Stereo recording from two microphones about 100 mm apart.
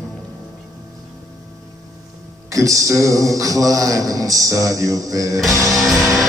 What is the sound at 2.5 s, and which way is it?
A man's voice, 35° right (ahead or behind).